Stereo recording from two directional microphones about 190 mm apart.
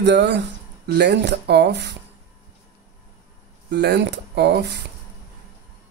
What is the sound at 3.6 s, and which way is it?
Speech, 60° right (ahead or behind).